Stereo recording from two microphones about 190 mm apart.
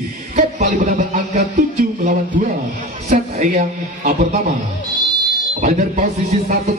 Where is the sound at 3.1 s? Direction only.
40° right (ahead or behind).